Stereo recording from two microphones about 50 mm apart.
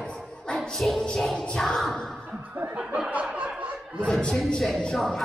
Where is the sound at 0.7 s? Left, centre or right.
Centre.